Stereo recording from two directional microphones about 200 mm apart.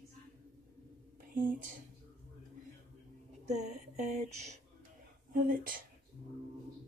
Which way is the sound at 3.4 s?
35° right (ahead or behind).